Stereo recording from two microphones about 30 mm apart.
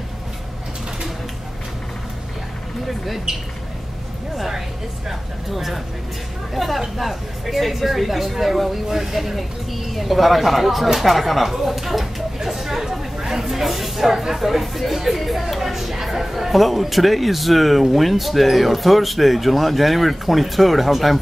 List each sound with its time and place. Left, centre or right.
3.3 s speech: right
5.5 s speech: centre